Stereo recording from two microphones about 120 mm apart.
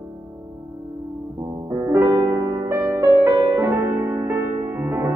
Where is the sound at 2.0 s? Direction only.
30° right (ahead or behind).